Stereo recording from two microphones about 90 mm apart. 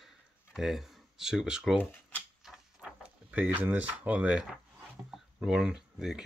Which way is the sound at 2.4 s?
5° right (ahead or behind).